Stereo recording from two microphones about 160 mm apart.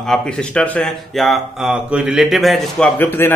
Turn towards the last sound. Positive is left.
turn(degrees=15)  # may be behind; listen again after turning